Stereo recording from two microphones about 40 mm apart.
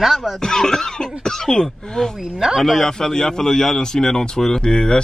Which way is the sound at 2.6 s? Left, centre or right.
Centre.